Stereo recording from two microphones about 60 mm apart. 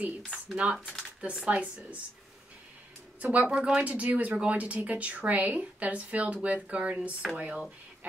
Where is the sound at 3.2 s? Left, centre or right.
Right.